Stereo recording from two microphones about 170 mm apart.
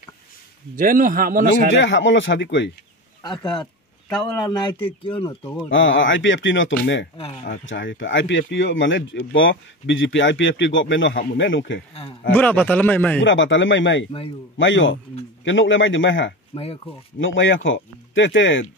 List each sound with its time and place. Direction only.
0.7 s a man's voice: 55° right (ahead or behind)
1.8 s speech: 90° left
3.2 s speech: 25° left (ahead or behind)
5.4 s speech: 15° left (ahead or behind)
5.7 s speech: 90° left
7.7 s speech: 90° left
11.9 s speech: 35° left (ahead or behind)
12.3 s speech: 10° left (ahead or behind)
13.2 s speech: 90° left
16.5 s speech: 35° left (ahead or behind)
17.2 s speech: 90° left